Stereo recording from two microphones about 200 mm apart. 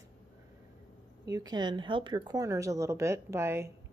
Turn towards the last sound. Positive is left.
turn(degrees=-10)  # may be behind; listen again after turning